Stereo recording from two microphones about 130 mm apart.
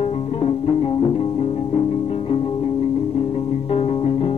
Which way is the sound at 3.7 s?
50° left (ahead or behind).